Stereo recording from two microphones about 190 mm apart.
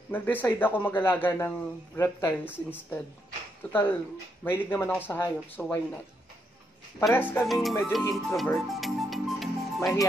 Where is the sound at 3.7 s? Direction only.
10° left (ahead or behind).